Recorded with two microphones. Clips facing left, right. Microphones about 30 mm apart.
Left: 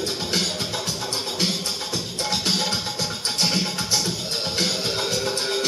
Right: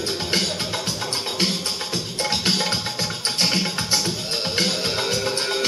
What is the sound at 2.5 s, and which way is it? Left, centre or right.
Music, centre.